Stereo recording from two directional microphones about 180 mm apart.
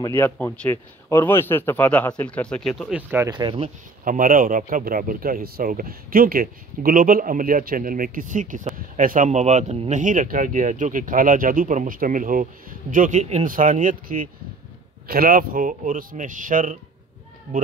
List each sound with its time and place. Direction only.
0.0 s speech: 15° left (ahead or behind); by 3.3 s 10° right (ahead or behind)
3.3 s speech: 25° right (ahead or behind)
4.0 s speech: 50° right (ahead or behind)